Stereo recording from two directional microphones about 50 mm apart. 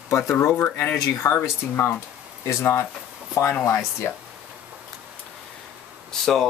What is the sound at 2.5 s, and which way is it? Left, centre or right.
Speech, left.